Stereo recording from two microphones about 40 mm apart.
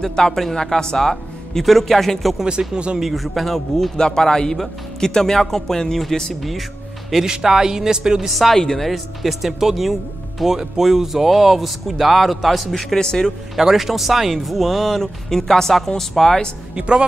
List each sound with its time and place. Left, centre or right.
0.0 s speech: centre
2.7 s speech: right
3.0 s a man's voice: centre
7.2 s speech: centre
8.3 s a man's voice: centre
8.5 s speech: centre
8.8 s a man's voice: centre
12.9 s speech: centre
13.6 s a man's voice: centre
15.2 s speech: centre
16.7 s speech: right